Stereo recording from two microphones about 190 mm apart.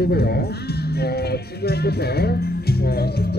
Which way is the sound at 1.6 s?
55° left (ahead or behind).